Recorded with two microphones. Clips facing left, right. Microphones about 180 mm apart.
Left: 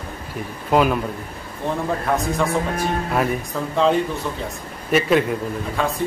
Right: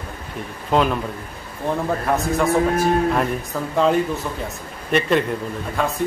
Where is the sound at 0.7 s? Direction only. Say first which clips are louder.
Left 1 dB; 5° left (ahead or behind).